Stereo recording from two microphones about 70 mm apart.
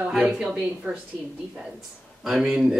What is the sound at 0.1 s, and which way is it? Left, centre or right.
Speech, centre.